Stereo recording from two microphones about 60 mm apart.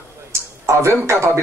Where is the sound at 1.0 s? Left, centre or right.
Right.